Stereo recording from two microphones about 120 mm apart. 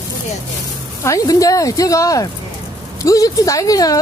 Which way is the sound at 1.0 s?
30° left (ahead or behind).